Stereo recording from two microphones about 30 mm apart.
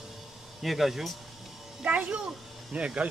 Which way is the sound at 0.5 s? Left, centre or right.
Centre.